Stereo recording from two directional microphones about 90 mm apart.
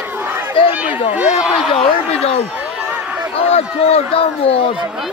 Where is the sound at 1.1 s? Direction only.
10° right (ahead or behind).